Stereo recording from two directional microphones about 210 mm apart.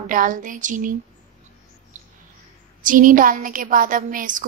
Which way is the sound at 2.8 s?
40° right (ahead or behind).